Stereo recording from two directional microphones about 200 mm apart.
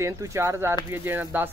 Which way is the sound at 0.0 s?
15° right (ahead or behind).